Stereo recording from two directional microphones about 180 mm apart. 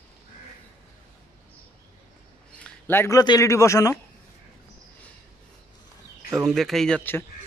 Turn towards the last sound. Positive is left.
turn(degrees=10)  # may be behind; listen again after turning